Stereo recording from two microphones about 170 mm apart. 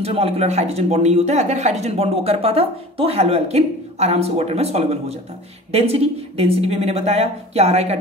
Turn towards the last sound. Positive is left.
turn(degrees=-40)  # may be behind; listen again after turning